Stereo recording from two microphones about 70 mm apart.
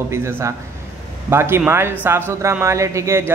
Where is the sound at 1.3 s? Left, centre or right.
Right.